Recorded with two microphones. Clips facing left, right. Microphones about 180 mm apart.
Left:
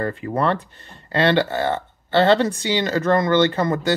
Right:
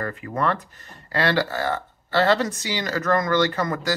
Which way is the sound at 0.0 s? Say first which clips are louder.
Left 4 dB; 30° left (ahead or behind).